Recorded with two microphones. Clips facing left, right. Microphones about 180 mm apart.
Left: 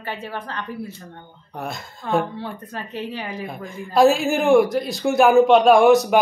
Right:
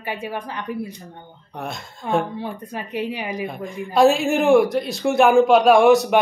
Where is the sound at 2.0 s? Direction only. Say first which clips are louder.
Even; 15° right (ahead or behind).